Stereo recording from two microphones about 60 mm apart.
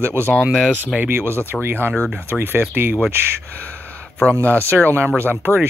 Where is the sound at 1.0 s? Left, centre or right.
Right.